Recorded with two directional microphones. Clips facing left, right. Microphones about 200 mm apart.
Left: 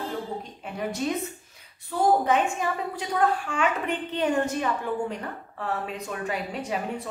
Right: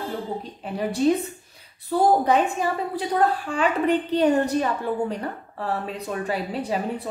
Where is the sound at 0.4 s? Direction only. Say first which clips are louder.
Right 4 dB; 30° right (ahead or behind).